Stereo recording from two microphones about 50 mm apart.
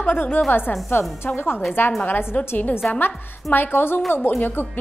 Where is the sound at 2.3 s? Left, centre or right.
Left.